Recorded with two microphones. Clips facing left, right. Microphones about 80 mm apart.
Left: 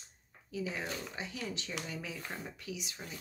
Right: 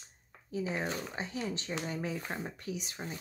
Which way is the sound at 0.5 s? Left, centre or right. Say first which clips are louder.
Right 4 dB; right.